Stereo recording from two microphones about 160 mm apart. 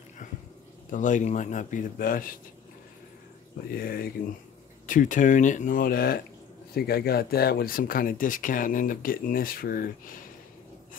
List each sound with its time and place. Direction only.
0.2 s a sound: 50° left (ahead or behind)
0.8 s speech: 55° left (ahead or behind)
3.7 s speech: 65° left (ahead or behind)
4.8 s speech: 55° left (ahead or behind)